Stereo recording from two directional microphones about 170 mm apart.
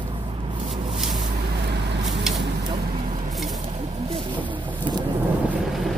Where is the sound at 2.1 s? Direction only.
Centre (ahead or behind).